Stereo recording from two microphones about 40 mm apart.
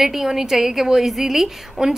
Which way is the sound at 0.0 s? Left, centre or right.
Centre.